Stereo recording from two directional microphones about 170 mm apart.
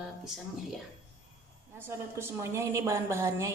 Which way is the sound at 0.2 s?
Centre (ahead or behind).